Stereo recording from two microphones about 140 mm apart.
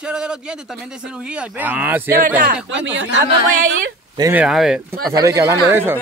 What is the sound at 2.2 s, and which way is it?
Speech, 80° right.